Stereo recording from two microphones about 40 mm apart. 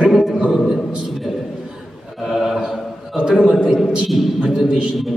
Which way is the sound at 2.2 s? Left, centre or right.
Centre.